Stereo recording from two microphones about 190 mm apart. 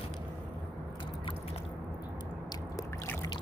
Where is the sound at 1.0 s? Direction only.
25° left (ahead or behind).